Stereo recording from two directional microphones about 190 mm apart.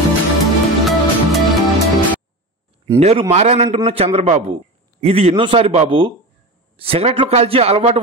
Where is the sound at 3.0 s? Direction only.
35° right (ahead or behind).